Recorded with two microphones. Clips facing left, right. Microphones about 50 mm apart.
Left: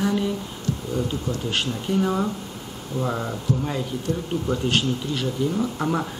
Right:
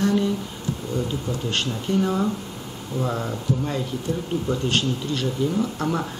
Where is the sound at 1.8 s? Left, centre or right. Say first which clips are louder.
Right 1 dB; centre.